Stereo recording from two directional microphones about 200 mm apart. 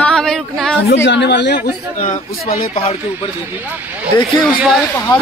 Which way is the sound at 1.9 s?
35° left (ahead or behind).